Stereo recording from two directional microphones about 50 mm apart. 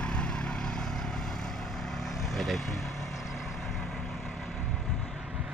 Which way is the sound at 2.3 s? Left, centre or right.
Centre.